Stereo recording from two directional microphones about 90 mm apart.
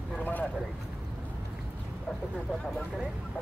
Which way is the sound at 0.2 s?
20° left (ahead or behind).